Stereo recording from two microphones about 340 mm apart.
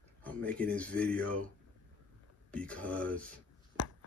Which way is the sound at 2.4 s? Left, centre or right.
Centre.